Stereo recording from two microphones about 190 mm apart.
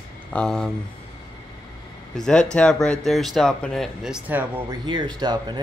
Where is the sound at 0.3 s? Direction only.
5° left (ahead or behind).